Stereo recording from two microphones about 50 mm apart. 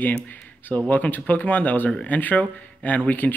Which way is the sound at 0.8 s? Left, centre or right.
Left.